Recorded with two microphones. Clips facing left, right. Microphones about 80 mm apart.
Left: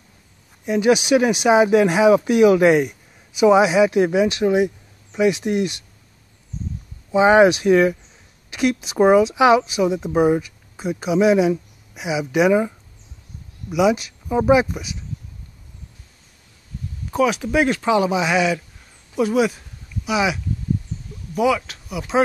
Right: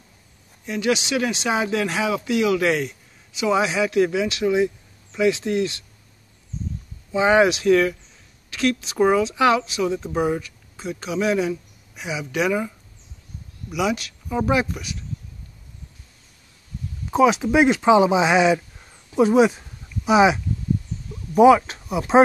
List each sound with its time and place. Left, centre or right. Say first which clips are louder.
0.7 s speech: left 6 dB; centre
7.1 s speech: left 4 dB; left
17.1 s speech: right 2 dB; right
21.4 s speech: right 6 dB; right